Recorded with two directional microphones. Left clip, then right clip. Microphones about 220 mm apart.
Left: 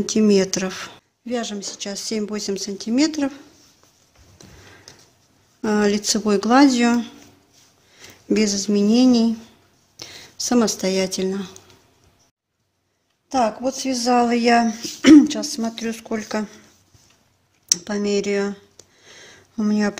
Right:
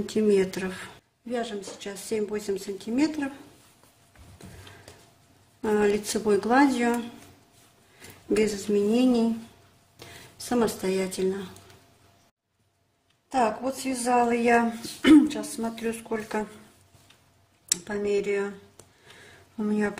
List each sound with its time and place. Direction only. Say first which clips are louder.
0.0 s speech: left 5 dB; 45° left (ahead or behind)
5.6 s speech: left 3 dB; 45° left (ahead or behind)
8.3 s speech: left 4 dB; 45° left (ahead or behind)
13.3 s a woman's voice: left 5 dB; 40° left (ahead or behind)
17.6 s speech: left 6 dB; 45° left (ahead or behind)
19.1 s a sound: left 7 dB; 40° left (ahead or behind)